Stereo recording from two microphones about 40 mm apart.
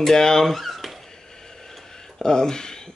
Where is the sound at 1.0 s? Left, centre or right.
Centre.